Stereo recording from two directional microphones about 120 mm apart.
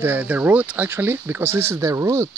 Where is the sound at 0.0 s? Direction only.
15° right (ahead or behind).